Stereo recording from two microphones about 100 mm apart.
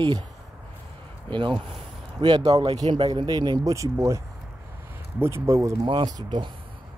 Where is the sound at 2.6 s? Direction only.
90° right.